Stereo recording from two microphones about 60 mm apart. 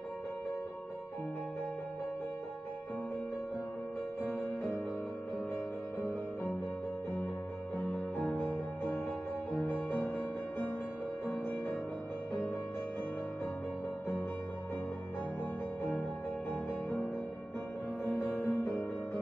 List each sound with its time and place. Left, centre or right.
4.2 s music: left
7.8 s music: centre
8.5 s music: left
11.4 s music: left
18.0 s music: left